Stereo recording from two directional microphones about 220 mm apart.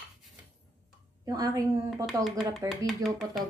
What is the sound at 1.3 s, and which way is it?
Speech, 15° right (ahead or behind).